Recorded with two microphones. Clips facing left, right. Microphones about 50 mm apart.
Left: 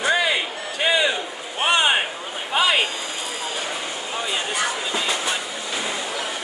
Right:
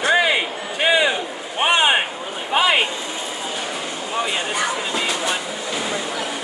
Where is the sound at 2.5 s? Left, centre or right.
Centre.